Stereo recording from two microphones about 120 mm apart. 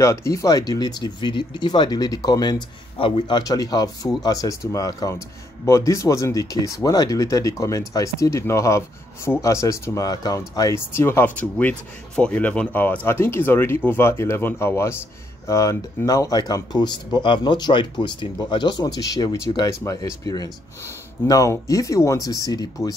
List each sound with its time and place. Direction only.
0.0 s speech: 25° left (ahead or behind)